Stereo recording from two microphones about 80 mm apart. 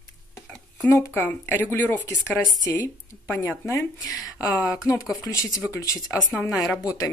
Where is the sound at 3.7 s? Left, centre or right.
Left.